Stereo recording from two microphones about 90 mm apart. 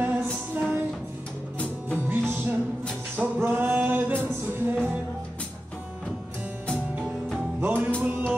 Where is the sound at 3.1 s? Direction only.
20° right (ahead or behind).